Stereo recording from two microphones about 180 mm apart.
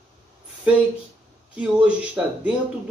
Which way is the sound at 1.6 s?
5° right (ahead or behind).